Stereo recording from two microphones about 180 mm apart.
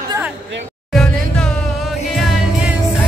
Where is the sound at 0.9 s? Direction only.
5° left (ahead or behind).